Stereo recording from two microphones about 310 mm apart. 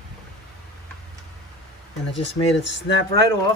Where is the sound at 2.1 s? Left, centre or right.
Centre.